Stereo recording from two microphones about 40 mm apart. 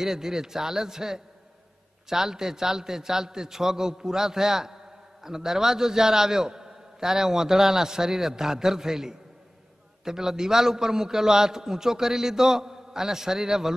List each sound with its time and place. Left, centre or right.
0.0 s a man's voice: centre